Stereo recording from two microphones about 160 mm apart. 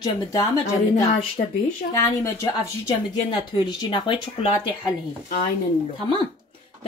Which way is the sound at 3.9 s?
30° left (ahead or behind).